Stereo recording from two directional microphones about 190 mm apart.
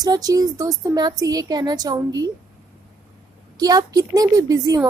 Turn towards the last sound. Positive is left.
turn(degrees=-20)  # may be behind; listen again after turning